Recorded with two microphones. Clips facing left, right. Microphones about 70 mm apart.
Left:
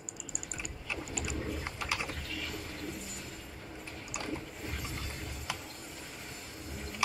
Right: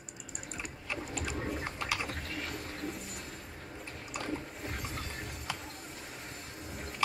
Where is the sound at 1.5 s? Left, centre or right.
Right.